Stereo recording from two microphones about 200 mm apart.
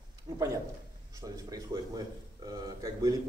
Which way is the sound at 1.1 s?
20° right (ahead or behind).